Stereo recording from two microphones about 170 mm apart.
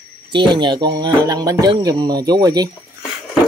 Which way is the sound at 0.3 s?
25° right (ahead or behind).